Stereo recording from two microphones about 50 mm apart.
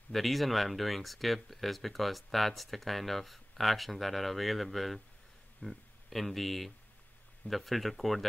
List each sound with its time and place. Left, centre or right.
0.1 s speech: centre